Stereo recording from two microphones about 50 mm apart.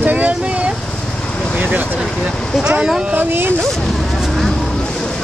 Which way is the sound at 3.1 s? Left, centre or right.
Right.